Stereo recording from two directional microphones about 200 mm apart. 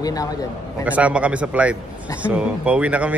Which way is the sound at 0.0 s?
20° left (ahead or behind).